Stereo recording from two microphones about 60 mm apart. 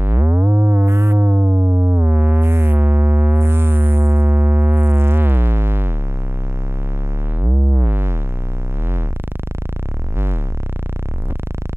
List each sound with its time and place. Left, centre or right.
0.0 s synthesizer: right
0.9 s synthesizer: right
7.3 s synthesizer: right